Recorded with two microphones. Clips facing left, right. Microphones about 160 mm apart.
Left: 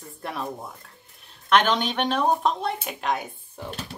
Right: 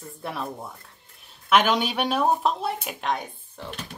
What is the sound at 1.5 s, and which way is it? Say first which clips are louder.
Speech: even; 10° right (ahead or behind).